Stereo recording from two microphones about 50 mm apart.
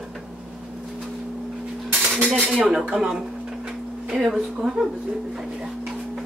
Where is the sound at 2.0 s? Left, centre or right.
Right.